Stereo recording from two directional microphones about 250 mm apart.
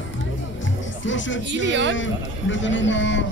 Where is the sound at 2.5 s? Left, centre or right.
Left.